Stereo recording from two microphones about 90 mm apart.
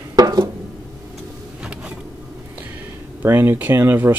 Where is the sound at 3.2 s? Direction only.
25° right (ahead or behind).